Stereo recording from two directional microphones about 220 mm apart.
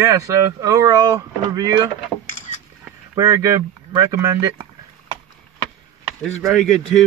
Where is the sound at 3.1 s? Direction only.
15° right (ahead or behind).